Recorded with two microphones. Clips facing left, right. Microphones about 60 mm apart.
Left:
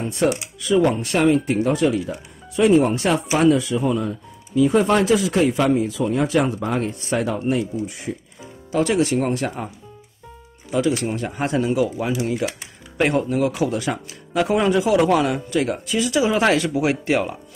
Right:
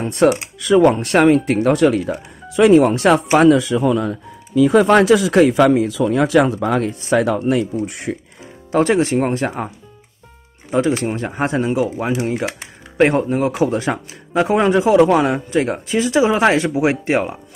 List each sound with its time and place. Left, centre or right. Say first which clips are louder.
0.0 s speech: right 6 dB; right
2.5 s speech: right 5 dB; right
7.7 s speech: right 4 dB; right
8.7 s speech: right 4 dB; right
10.7 s speech: right 3 dB; right